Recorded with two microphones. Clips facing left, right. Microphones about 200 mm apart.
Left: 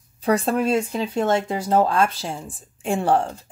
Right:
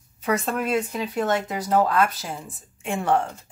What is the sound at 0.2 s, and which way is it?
Speech, 35° left (ahead or behind).